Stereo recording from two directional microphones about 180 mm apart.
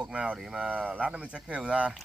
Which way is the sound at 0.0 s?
5° right (ahead or behind).